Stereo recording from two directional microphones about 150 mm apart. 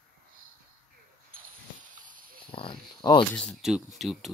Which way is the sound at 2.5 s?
35° left (ahead or behind).